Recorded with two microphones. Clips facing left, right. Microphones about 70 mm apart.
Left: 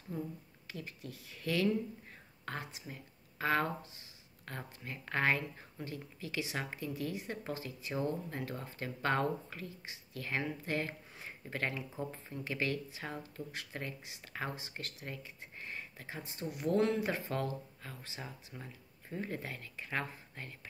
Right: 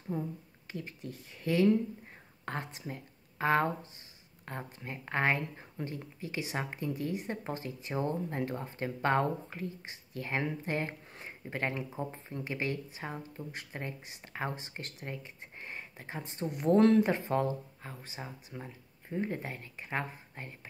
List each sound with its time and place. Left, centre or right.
0.1 s speech: right
2.4 s speech: right
17.0 s speech: right